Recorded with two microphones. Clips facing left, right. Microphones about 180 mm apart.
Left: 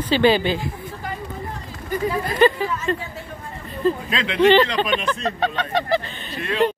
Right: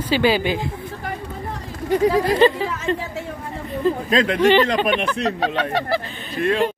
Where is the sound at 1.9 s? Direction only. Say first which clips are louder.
Right 7 dB; 80° right.